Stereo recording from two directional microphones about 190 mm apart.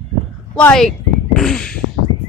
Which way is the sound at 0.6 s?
5° left (ahead or behind).